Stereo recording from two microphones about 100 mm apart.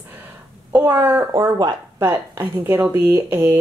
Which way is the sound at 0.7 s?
20° right (ahead or behind).